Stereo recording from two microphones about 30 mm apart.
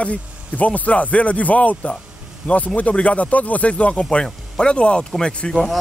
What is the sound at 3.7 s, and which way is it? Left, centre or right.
Speech, left.